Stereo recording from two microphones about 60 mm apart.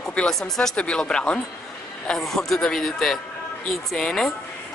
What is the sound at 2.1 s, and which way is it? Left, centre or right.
Speech, centre.